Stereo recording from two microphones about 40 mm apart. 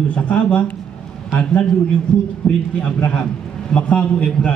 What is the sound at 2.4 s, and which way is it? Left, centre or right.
Speech, left.